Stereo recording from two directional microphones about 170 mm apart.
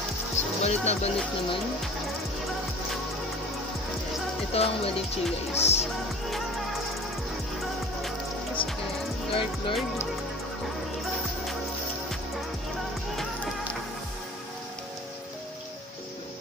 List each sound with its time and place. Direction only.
0.7 s speech: 40° left (ahead or behind)
4.6 s speech: 35° left (ahead or behind)
8.6 s music: 30° left (ahead or behind)
9.3 s speech: 30° left (ahead or behind)